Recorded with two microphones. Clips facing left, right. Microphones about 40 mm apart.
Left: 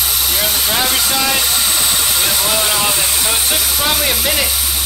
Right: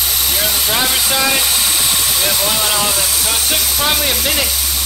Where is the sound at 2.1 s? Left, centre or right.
Centre.